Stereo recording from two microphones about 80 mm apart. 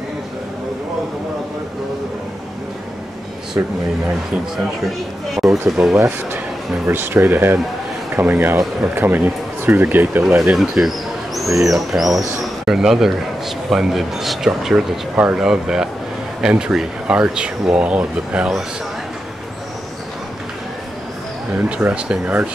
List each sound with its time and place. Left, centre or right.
3.6 s speech: right
4.8 s speech: centre
5.9 s speech: right
10.2 s speech: centre
21.5 s speech: centre